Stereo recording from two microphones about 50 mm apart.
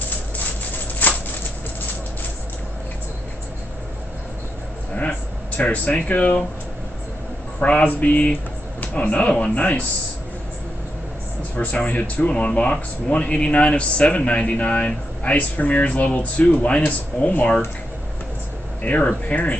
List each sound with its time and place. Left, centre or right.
1.0 s a sound: left
5.6 s speech: left
7.6 s speech: left
11.5 s speech: left
18.8 s speech: left